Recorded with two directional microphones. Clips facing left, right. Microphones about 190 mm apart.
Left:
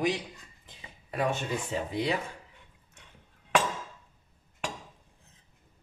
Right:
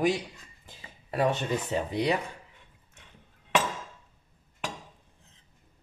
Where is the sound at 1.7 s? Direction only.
35° right (ahead or behind).